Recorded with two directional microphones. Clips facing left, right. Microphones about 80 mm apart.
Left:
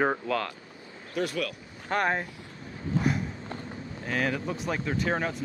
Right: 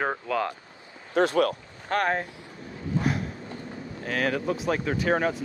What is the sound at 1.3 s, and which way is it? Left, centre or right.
Speech, right.